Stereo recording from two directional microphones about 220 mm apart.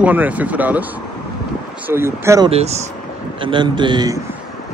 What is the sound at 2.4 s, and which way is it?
A man's voice, 30° right (ahead or behind).